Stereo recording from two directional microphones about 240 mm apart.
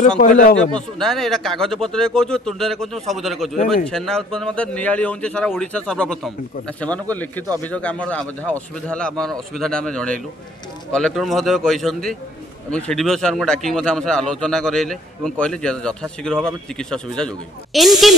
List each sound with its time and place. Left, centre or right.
0.2 s speech: left
0.7 s a man's voice: centre